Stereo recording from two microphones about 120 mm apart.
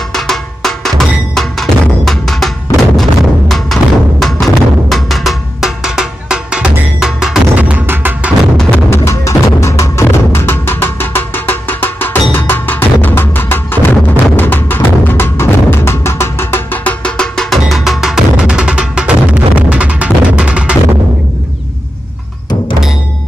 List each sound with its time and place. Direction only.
0.1 s music: 5° left (ahead or behind); by 8.3 s 15° right (ahead or behind)
8.5 s music: 5° left (ahead or behind)
8.9 s music: 25° left (ahead or behind); by 20.7 s 10° right (ahead or behind)